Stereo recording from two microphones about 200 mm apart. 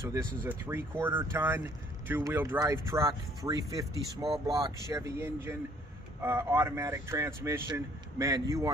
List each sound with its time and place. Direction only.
0.4 s speech: 10° right (ahead or behind)